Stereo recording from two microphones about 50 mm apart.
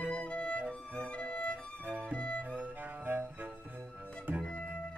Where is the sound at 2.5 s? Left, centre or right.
Right.